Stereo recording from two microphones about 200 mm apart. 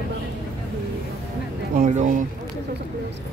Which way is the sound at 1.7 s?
40° right (ahead or behind).